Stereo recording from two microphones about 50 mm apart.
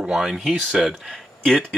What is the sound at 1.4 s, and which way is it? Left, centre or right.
Speech, centre.